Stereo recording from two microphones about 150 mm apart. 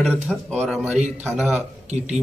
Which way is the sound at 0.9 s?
50° right (ahead or behind).